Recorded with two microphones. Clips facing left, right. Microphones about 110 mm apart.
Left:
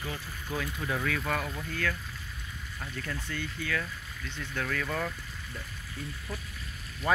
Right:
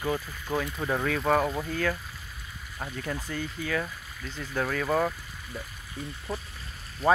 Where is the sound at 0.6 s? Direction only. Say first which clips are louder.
Right 4 dB; 35° right (ahead or behind).